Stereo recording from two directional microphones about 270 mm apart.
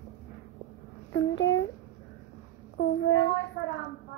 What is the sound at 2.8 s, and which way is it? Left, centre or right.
Child singing, left.